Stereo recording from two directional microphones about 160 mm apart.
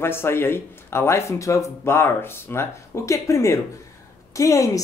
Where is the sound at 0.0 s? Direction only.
15° left (ahead or behind).